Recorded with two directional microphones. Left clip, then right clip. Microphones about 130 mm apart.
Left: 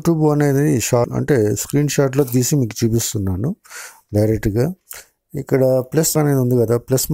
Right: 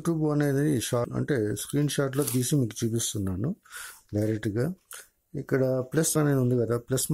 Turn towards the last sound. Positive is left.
turn(degrees=35)  # may be behind; listen again after turning